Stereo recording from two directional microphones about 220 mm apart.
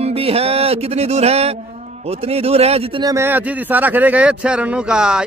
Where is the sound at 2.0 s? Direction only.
30° right (ahead or behind).